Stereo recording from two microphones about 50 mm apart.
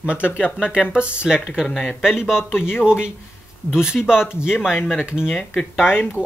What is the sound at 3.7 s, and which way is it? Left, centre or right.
Speech, centre.